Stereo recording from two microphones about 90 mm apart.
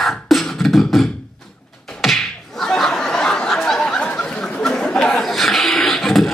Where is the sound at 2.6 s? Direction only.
5° left (ahead or behind).